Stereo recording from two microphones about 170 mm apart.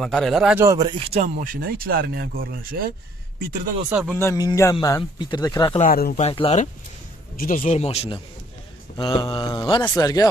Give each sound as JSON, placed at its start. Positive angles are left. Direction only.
{"t": 0.0, "sound": "a man's voice", "side_deg": 0}
{"t": 0.7, "sound": "speech", "side_deg": -25}
{"t": 3.9, "sound": "speech", "side_deg": -5}
{"t": 4.2, "sound": "speech", "side_deg": 15}
{"t": 5.8, "sound": "speech", "side_deg": 60}
{"t": 6.1, "sound": "speech", "side_deg": 35}
{"t": 7.3, "sound": "speech", "side_deg": 50}